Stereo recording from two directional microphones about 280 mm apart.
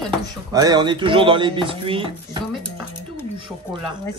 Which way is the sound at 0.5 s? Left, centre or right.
Centre.